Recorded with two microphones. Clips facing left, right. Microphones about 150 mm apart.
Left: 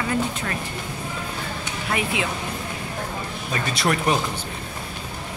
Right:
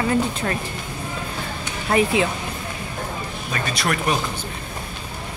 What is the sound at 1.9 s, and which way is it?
Speech, 40° right (ahead or behind).